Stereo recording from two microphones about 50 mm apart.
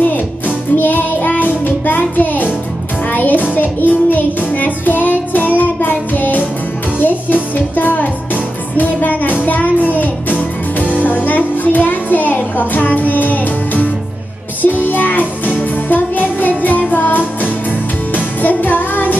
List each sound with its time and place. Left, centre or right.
0.7 s child singing: left
3.1 s music: left
7.0 s speech: left
8.7 s music: left